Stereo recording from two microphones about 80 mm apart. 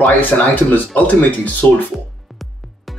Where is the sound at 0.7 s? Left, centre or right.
Left.